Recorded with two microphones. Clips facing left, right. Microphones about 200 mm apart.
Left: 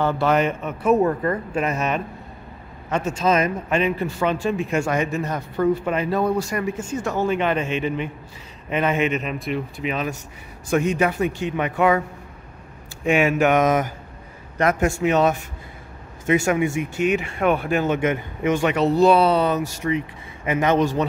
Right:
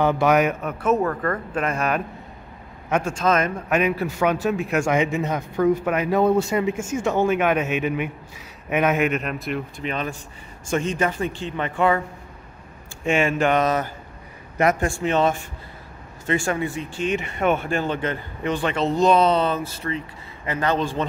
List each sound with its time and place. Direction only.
0.0 s a man's voice: 15° right (ahead or behind)
0.9 s speech: 15° left (ahead or behind)
3.7 s a man's voice: 5° right (ahead or behind)
4.9 s a man's voice: 20° right (ahead or behind)
6.1 s a man's voice: 25° right (ahead or behind)
6.8 s a man's voice: 10° right (ahead or behind); by 12.0 s 10° left (ahead or behind)
13.0 s speech: 5° left (ahead or behind)
15.0 s speech: 5° left (ahead or behind)